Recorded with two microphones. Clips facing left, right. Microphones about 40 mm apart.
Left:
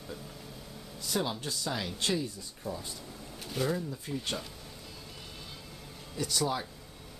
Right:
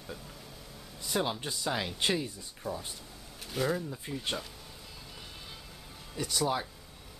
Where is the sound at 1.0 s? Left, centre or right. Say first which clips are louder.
Right 1 dB; centre.